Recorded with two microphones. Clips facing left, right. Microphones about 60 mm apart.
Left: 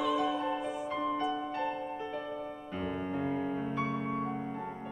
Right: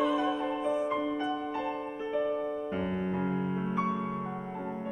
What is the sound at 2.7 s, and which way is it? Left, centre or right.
Piano, right.